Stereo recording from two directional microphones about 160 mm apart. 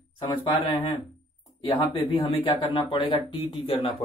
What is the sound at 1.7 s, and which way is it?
A man's voice, 35° left (ahead or behind).